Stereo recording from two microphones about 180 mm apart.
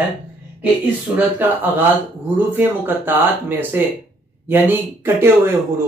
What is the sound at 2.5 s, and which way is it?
Speech, 10° right (ahead or behind).